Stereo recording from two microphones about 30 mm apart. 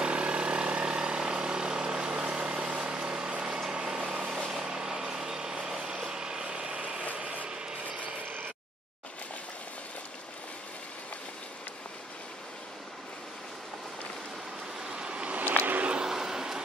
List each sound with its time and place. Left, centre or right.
0.0 s vehicle: right
2.8 s a sound: right
3.7 s vehicle: right
7.2 s a sound: right
15.0 s vehicle: right
15.3 s vehicle: right
16.0 s vehicle: centre